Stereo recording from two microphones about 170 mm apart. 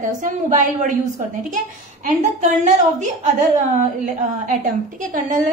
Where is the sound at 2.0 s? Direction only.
45° right (ahead or behind).